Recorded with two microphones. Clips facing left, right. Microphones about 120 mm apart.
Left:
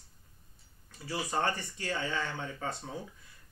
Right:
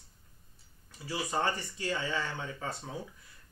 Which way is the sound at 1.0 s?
10° right (ahead or behind).